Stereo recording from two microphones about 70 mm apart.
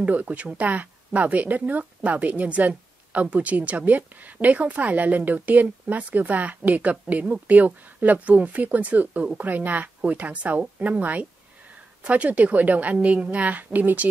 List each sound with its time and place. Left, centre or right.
0.0 s a woman's voice: right